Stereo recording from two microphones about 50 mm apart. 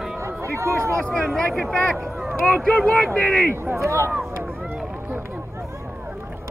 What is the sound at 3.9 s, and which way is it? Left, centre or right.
Speech, right.